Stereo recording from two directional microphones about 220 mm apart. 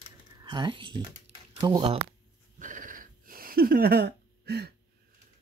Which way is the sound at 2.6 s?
35° right (ahead or behind).